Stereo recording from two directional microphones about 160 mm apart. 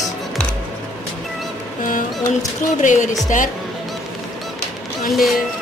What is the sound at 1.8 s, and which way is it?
Music, 55° left (ahead or behind).